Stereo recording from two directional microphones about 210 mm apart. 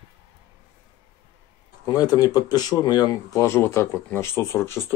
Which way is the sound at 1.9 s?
15° left (ahead or behind).